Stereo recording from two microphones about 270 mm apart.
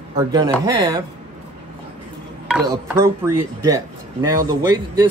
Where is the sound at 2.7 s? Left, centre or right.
Centre.